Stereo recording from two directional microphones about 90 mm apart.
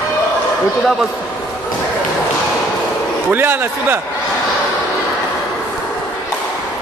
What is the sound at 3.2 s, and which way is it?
Speech, 25° right (ahead or behind).